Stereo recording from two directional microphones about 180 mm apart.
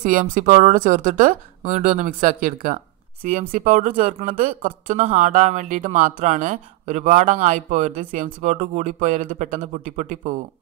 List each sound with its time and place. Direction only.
0.0 s a woman's voice: 45° right (ahead or behind)